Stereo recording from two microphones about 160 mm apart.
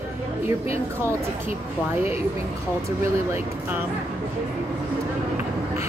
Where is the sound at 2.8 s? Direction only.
15° right (ahead or behind).